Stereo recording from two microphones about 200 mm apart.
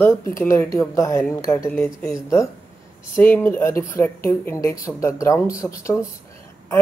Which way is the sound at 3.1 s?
10° left (ahead or behind).